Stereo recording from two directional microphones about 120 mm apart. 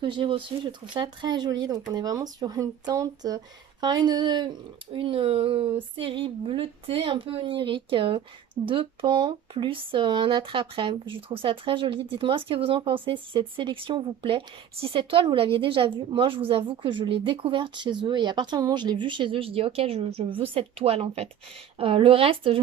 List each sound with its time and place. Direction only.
0.0 s speech: 45° right (ahead or behind)